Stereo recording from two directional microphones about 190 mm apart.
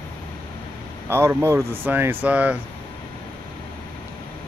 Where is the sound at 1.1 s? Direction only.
15° right (ahead or behind).